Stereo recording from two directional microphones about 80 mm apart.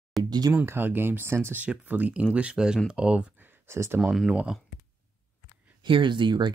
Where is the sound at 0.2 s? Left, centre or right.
Right.